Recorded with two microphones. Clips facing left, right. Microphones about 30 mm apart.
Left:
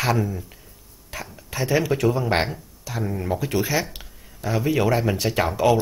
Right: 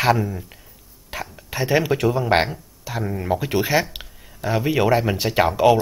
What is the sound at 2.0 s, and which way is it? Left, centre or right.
Speech, centre.